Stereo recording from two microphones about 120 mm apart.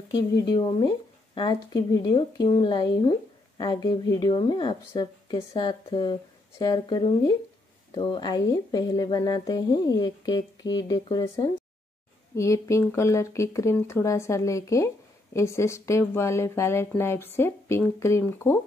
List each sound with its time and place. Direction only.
0.1 s speech: 40° left (ahead or behind)
12.4 s speech: 25° left (ahead or behind)